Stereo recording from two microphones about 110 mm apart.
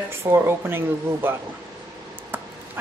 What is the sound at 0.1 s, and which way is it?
Speech, 20° right (ahead or behind).